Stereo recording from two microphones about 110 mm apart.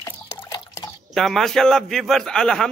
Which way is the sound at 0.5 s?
35° left (ahead or behind).